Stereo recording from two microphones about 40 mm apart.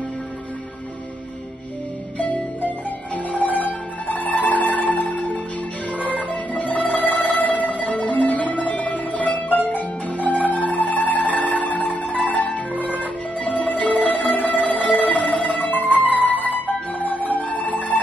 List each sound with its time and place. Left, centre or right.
2.1 s music: left